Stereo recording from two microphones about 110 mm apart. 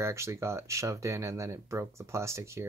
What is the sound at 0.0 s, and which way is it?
Speech, 25° right (ahead or behind).